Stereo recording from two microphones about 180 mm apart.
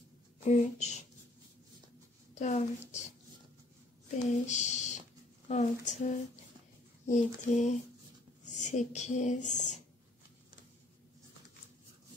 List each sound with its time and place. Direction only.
0.4 s speech: 40° left (ahead or behind)
2.3 s speech: 40° left (ahead or behind)
4.2 s speech: 40° left (ahead or behind)